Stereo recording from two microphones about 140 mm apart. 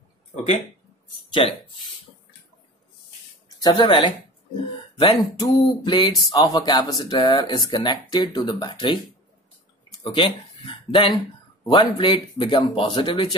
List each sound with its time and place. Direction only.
1.4 s speech: 45° left (ahead or behind)
3.4 s speech: 25° left (ahead or behind)
10.1 s speech: 40° left (ahead or behind)